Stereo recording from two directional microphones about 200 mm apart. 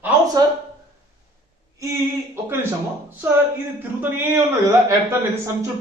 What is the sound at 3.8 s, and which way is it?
Speech, 10° right (ahead or behind).